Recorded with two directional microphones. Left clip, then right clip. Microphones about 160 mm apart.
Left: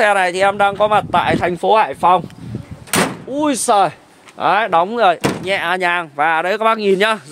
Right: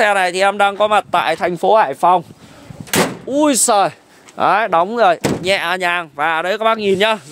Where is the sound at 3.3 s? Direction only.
65° right (ahead or behind).